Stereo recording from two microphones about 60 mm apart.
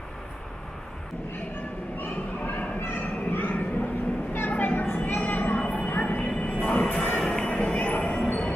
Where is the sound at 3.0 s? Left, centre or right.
Left.